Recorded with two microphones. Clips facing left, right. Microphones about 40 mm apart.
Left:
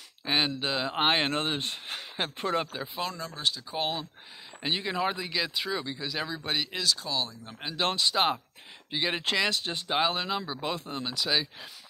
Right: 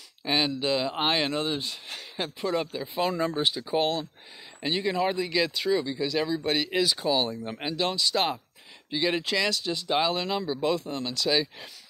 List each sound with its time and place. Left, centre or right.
0.2 s speech: centre; by 2.6 s left
2.6 s speech: left
3.1 s speech: right
4.6 s speech: centre
6.7 s speech: centre
7.0 s speech: right
7.8 s speech: left
8.1 s speech: centre
9.4 s speech: left
10.0 s speech: centre